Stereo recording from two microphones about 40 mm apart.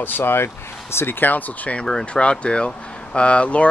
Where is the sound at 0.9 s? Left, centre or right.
Left.